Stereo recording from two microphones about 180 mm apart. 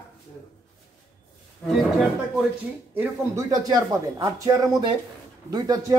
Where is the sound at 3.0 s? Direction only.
15° right (ahead or behind).